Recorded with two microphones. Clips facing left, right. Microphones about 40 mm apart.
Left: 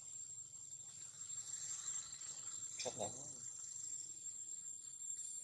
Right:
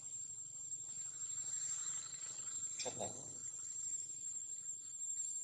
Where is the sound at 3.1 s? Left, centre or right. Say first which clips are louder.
Right 2 dB; right.